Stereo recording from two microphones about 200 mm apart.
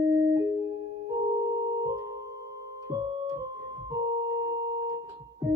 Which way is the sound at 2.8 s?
15° right (ahead or behind).